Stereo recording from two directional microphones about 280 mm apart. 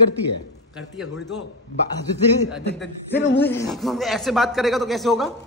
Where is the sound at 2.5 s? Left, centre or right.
Centre.